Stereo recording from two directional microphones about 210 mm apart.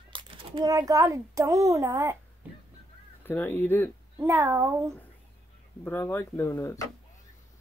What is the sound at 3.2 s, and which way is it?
Speech, 10° left (ahead or behind).